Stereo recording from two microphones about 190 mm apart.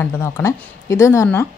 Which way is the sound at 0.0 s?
15° left (ahead or behind).